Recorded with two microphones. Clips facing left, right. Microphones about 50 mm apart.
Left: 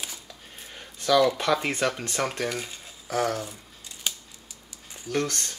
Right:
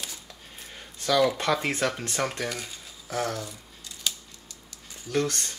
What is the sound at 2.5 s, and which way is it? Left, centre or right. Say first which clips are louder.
Speech: left 3 dB; centre.